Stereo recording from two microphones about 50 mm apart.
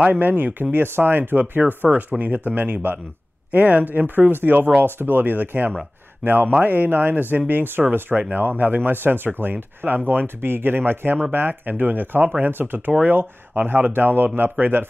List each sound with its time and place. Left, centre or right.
0.0 s speech: right
1.9 s speech: right